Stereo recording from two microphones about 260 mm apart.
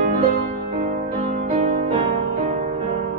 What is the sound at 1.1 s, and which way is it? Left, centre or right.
Music, right.